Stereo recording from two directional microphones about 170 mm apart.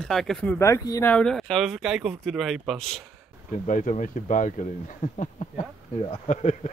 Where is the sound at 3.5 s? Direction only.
50° left (ahead or behind).